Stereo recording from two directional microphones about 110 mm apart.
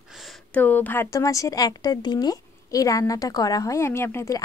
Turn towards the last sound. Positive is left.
turn(degrees=25)  # may be behind; listen again after turning